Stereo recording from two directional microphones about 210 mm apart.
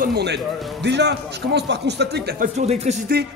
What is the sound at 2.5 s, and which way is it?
Speech, 30° right (ahead or behind).